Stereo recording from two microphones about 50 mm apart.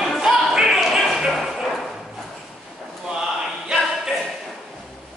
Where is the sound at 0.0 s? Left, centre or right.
Centre.